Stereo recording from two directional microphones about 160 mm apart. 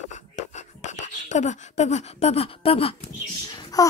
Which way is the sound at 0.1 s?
45° left (ahead or behind).